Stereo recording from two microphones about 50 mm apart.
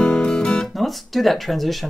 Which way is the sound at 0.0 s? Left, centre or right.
Centre.